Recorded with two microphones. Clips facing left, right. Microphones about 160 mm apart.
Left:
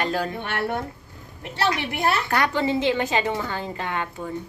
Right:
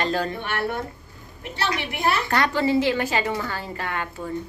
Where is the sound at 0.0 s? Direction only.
10° left (ahead or behind).